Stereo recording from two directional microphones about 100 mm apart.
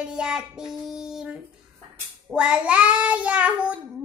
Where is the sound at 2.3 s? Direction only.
10° right (ahead or behind).